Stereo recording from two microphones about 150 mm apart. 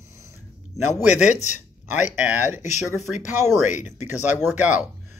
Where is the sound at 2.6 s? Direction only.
50° left (ahead or behind).